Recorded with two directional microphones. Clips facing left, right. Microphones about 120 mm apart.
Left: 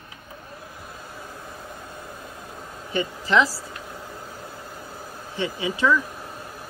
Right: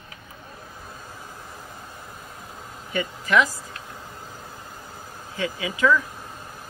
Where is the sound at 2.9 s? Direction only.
25° left (ahead or behind).